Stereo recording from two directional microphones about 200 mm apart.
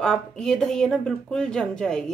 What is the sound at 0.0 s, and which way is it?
A woman's voice, 5° left (ahead or behind).